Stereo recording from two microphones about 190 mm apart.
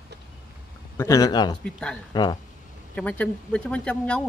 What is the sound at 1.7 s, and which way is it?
Speech, 5° left (ahead or behind).